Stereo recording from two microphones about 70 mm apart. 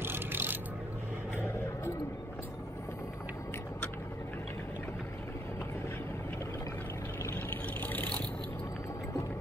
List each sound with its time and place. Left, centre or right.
0.0 s mechanisms: right
7.3 s vehicle: left